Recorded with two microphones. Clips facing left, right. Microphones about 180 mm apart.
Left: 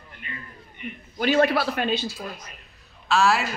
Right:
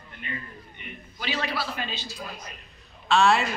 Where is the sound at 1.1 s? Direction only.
50° left (ahead or behind).